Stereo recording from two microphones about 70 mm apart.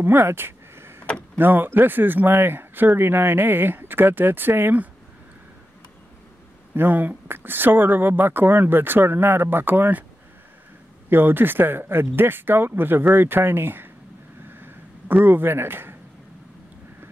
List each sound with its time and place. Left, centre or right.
0.0 s a sound: right
1.0 s vehicle: centre
1.4 s speech: right
6.7 s speech: right
11.1 s speech: right
14.5 s a sound: right